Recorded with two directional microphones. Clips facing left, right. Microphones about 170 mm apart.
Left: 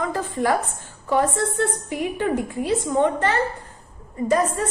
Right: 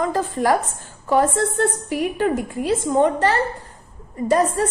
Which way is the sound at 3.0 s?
40° right (ahead or behind).